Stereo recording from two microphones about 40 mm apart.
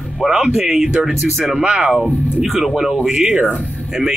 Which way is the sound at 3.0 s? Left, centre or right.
Centre.